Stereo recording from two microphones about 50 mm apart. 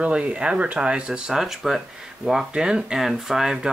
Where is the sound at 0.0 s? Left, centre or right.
Right.